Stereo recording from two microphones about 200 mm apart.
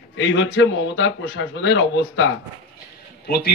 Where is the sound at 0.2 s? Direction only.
70° left (ahead or behind).